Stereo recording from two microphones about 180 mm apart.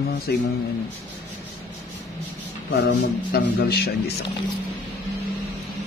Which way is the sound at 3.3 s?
60° left (ahead or behind).